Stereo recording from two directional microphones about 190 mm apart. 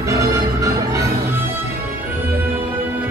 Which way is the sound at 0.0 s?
15° right (ahead or behind).